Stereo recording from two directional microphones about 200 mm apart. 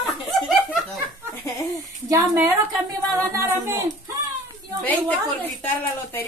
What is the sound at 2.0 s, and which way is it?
Speech, 15° right (ahead or behind).